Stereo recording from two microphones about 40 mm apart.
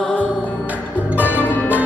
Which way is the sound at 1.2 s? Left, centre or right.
Left.